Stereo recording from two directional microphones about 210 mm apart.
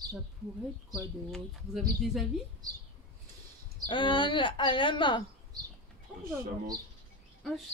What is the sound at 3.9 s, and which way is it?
Speech, 20° left (ahead or behind).